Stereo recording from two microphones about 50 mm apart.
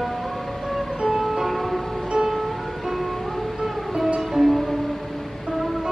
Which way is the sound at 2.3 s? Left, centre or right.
Centre.